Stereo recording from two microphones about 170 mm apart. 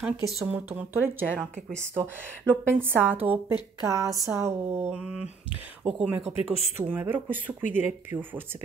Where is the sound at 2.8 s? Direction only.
10° right (ahead or behind).